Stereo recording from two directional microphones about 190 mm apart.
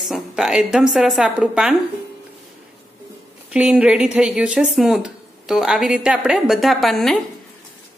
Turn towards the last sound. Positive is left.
turn(degrees=0)  # may be behind; listen again after turning